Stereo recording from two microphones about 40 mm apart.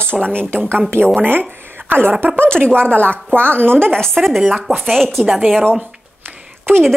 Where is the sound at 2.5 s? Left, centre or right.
Left.